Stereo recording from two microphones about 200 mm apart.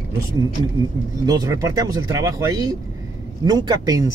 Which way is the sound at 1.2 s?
20° right (ahead or behind).